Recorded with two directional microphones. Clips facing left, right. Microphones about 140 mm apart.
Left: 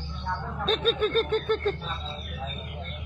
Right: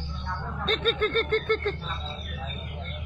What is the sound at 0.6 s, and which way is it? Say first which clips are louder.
Speech: left 1 dB; 5° left (ahead or behind).